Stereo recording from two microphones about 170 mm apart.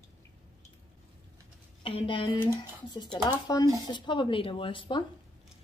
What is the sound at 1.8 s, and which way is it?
A woman's voice, 35° left (ahead or behind).